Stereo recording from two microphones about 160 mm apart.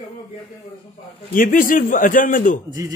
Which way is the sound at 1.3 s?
60° left (ahead or behind).